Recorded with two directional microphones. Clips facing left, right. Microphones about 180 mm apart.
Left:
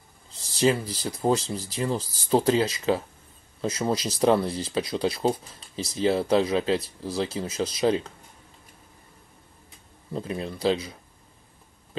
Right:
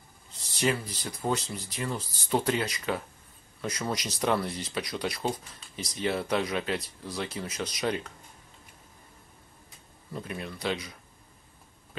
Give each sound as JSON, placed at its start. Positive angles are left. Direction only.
{"t": 0.4, "sound": "a sound", "side_deg": 30}
{"t": 1.0, "sound": "speech", "side_deg": 30}
{"t": 10.1, "sound": "speech", "side_deg": 30}